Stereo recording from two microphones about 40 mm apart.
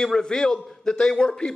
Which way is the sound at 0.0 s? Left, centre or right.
Centre.